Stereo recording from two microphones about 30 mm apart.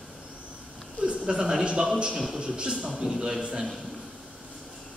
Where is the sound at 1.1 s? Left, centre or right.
Right.